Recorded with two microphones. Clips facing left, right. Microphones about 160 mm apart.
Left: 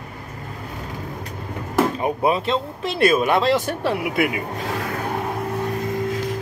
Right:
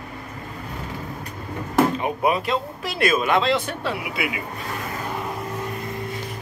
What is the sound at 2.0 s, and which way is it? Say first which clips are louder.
Speech: left 2 dB; 30° left (ahead or behind).